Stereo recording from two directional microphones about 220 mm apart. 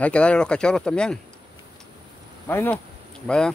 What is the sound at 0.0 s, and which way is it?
Speech, 5° left (ahead or behind).